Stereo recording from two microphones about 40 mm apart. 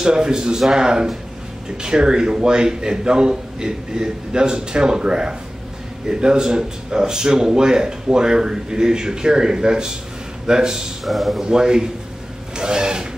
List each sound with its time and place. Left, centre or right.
0.0 s a man's voice: centre
11.1 s speech: centre
11.4 s speech: centre
12.5 s a sound: centre